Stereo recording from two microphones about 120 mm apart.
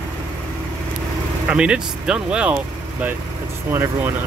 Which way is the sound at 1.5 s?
10° right (ahead or behind).